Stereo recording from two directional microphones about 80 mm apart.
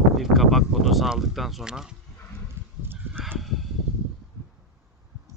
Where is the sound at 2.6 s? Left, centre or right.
Right.